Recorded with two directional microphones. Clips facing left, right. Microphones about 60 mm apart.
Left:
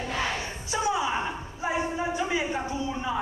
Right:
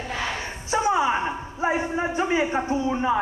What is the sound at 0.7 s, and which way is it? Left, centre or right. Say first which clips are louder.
A man's voice: right 6 dB; right.